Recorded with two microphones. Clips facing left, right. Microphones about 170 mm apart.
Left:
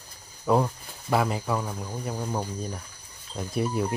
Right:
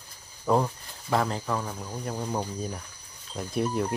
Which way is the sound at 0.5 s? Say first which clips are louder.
Left 1 dB; centre (ahead or behind).